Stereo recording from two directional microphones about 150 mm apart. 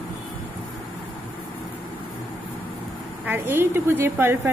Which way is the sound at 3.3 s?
15° right (ahead or behind).